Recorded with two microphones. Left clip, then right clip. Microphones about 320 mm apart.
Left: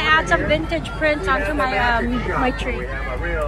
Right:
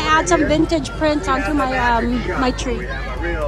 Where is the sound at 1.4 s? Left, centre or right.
Centre.